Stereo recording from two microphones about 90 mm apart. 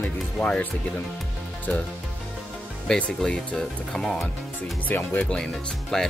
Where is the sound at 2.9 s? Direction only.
10° left (ahead or behind).